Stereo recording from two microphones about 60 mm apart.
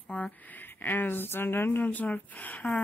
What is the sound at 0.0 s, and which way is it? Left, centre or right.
Speech, left.